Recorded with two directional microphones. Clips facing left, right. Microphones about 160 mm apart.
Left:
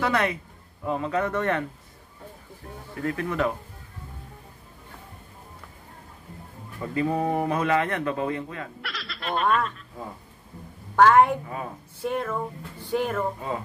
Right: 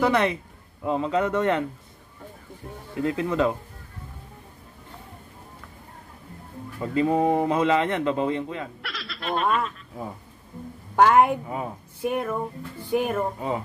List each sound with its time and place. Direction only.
0.0 s speech: 20° right (ahead or behind)
2.9 s speech: 20° right (ahead or behind)
6.8 s speech: 20° right (ahead or behind)
8.8 s a sound: centre (ahead or behind)
11.0 s speech: 15° right (ahead or behind)